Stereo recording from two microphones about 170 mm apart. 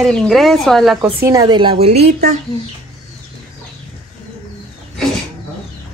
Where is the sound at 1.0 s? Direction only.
15° right (ahead or behind); by 2.0 s 35° right (ahead or behind).